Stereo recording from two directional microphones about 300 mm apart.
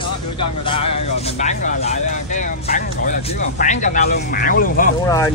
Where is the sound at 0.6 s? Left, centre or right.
Centre.